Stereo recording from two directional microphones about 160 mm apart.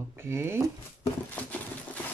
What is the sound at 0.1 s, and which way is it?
Speech, 15° right (ahead or behind).